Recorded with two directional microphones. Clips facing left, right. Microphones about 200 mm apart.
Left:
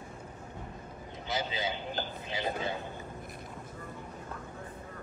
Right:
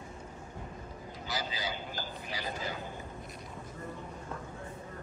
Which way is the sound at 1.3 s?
25° left (ahead or behind).